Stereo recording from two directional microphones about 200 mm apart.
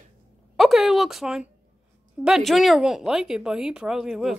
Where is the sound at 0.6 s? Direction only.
Centre (ahead or behind).